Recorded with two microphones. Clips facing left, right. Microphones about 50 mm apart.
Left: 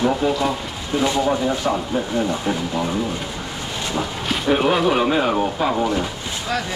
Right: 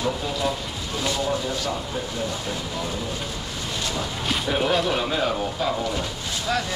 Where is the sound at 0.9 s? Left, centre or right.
Left.